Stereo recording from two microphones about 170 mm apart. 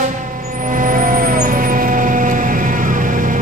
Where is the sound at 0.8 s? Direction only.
55° right (ahead or behind).